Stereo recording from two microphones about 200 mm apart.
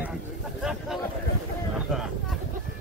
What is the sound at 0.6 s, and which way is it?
A man's voice, centre (ahead or behind).